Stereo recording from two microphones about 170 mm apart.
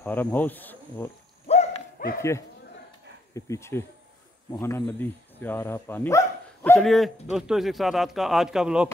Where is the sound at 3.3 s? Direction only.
15° left (ahead or behind).